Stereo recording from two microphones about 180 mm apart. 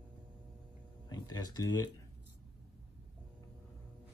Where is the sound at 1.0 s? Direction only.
20° left (ahead or behind).